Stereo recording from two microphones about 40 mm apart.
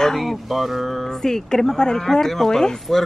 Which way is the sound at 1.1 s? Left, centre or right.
Centre.